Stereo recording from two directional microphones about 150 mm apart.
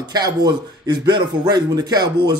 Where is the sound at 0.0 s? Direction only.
25° right (ahead or behind).